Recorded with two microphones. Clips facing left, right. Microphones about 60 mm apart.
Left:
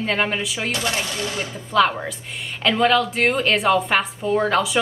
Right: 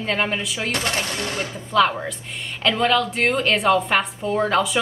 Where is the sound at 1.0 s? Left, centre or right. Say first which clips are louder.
Even; right.